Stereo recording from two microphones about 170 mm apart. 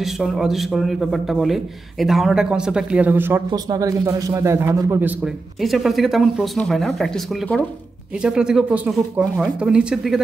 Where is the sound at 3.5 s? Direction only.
20° right (ahead or behind).